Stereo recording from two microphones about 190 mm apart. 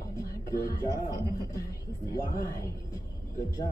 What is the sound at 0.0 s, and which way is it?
A man's voice, 15° left (ahead or behind).